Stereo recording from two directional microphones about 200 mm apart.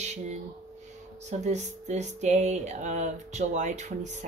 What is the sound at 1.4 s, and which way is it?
Speech, 35° right (ahead or behind).